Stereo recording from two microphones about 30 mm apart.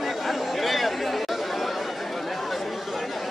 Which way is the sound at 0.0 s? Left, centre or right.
Centre.